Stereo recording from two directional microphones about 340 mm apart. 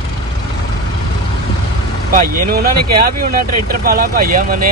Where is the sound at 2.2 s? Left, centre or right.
Right.